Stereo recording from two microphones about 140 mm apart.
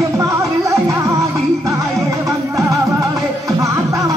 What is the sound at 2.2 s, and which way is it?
Music, 20° right (ahead or behind).